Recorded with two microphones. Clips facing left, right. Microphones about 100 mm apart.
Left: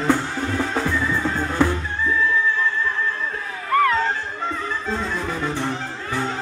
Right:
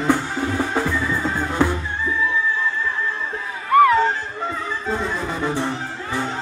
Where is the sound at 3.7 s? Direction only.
15° right (ahead or behind).